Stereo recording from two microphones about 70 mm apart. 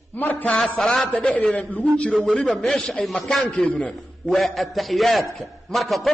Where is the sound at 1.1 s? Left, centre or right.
Centre.